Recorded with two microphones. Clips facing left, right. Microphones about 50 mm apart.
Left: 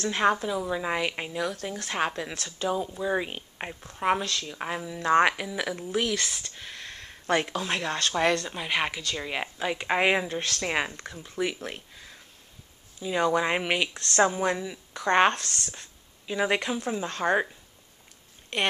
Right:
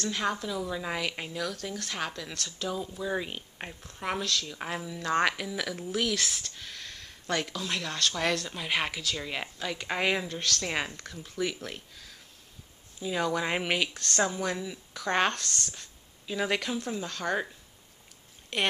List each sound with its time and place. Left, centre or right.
0.0 s a woman's voice: left
0.5 s a woman's voice: left
5.0 s speech: centre
6.4 s speech: centre
13.0 s speech: centre
14.1 s speech: left
14.6 s a woman's voice: centre
15.3 s speech: left
16.3 s speech: centre
18.5 s speech: centre